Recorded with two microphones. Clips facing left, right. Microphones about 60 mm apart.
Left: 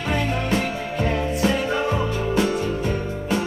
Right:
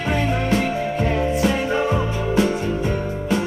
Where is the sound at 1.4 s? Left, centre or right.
Right.